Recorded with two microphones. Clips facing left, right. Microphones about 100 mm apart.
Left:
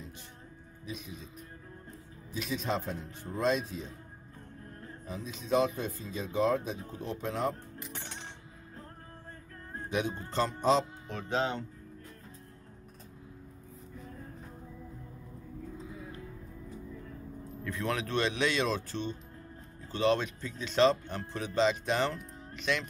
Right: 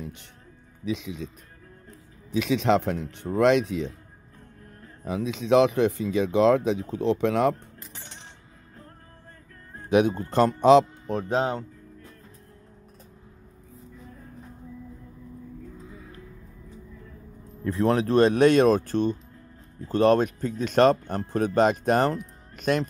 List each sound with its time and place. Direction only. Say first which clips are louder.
0.8 s speech: right 12 dB; 90° right
2.3 s speech: right 11 dB; 90° right
5.0 s speech: right 13 dB; 75° right (ahead or behind)
9.8 s speech: right 12 dB; 60° right (ahead or behind)
11.1 s speech: right 7 dB; 40° right (ahead or behind)
17.6 s speech: right 11 dB; 35° right (ahead or behind)